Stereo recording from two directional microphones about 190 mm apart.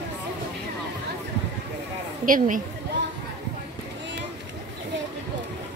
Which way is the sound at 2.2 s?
45° right (ahead or behind).